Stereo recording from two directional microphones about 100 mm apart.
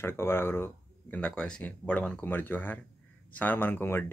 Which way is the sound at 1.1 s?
10° left (ahead or behind).